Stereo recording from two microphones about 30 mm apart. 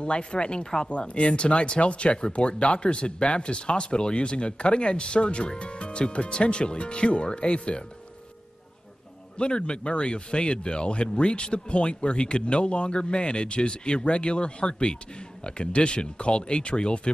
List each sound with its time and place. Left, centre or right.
0.0 s speech: left
9.4 s speech: left